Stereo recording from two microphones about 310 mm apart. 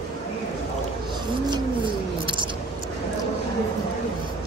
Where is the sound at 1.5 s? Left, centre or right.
Centre.